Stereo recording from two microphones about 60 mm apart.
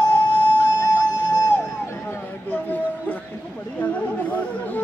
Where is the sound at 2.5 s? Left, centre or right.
Left.